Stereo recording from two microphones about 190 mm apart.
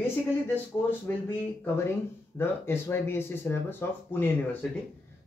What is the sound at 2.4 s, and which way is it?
Speech, 10° left (ahead or behind).